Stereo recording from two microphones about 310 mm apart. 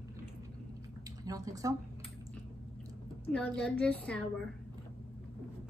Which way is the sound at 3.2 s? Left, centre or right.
Centre.